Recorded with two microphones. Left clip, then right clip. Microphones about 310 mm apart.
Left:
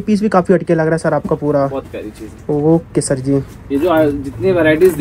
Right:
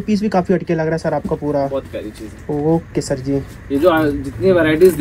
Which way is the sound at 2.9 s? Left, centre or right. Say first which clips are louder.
Left 4 dB; centre.